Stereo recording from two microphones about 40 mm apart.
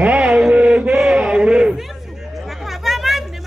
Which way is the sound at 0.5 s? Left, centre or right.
Right.